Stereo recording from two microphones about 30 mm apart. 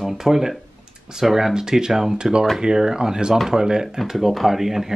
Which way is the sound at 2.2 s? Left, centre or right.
Right.